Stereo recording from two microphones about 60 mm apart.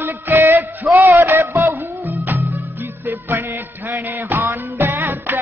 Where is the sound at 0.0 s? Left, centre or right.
Right.